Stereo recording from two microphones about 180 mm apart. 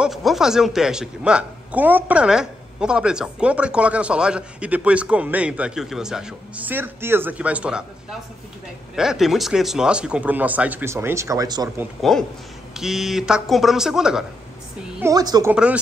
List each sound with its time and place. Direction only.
0.0 s a man's voice: centre (ahead or behind)
8.9 s speech: 5° right (ahead or behind); by 11.7 s 20° right (ahead or behind)
12.0 s a man's voice: centre (ahead or behind)
15.0 s a woman's voice: 20° right (ahead or behind)
15.5 s a man's voice: 5° right (ahead or behind)